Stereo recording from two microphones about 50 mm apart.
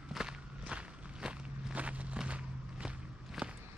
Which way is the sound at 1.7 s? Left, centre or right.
Right.